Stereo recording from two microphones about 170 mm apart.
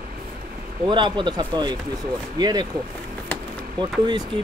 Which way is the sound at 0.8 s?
25° right (ahead or behind).